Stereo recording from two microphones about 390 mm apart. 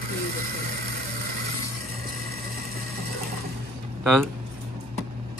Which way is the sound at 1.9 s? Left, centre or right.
Right.